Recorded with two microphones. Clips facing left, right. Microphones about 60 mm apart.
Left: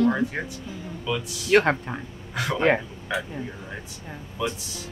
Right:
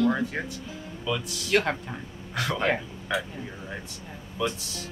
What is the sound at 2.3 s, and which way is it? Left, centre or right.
Speech, centre.